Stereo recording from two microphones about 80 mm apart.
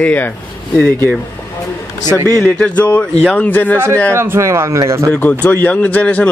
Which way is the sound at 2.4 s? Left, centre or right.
Centre.